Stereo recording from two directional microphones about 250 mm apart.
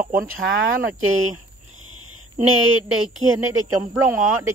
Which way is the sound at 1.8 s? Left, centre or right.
Right.